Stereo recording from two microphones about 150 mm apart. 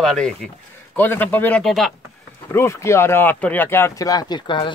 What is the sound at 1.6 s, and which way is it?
Speech, centre (ahead or behind).